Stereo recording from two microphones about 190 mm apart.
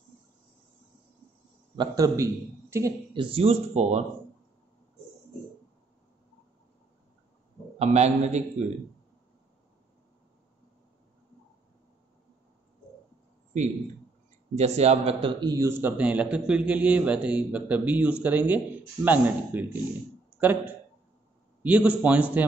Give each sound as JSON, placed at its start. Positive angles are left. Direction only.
{"t": 1.8, "sound": "a man's voice", "side_deg": -20}
{"t": 3.3, "sound": "a man's voice", "side_deg": -30}
{"t": 7.8, "sound": "a man's voice", "side_deg": -35}
{"t": 14.5, "sound": "a man's voice", "side_deg": -35}
{"t": 15.4, "sound": "a man's voice", "side_deg": -15}